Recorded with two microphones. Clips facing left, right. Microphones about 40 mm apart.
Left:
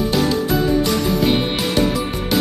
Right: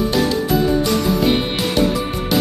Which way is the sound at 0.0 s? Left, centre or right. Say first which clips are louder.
Even; centre.